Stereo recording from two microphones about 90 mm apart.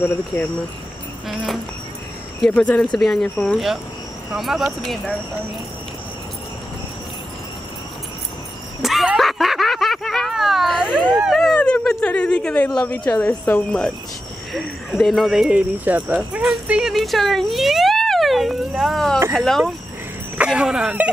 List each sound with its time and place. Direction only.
1.3 s speech: centre (ahead or behind)
2.4 s speech: 15° left (ahead or behind)
3.0 s speech: 5° left (ahead or behind)
8.8 s snicker: centre (ahead or behind)
11.1 s dog: 10° right (ahead or behind)
11.3 s dog: 5° left (ahead or behind)
12.8 s speech: 15° left (ahead or behind)
13.7 s speech: 10° left (ahead or behind)
15.5 s speech: 15° right (ahead or behind)
16.9 s speech: centre (ahead or behind)
20.3 s speech: 10° right (ahead or behind)